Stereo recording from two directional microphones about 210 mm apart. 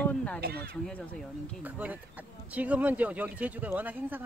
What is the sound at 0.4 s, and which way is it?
Speech, 45° right (ahead or behind).